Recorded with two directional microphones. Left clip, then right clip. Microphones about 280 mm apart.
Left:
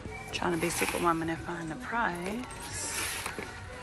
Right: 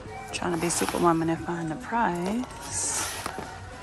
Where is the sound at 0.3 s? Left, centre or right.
Centre.